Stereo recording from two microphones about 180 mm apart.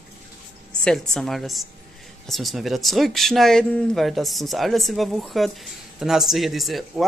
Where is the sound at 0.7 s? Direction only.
5° left (ahead or behind).